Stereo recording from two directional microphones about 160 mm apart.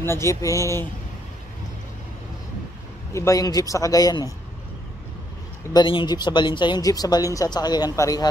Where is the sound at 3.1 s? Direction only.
20° left (ahead or behind).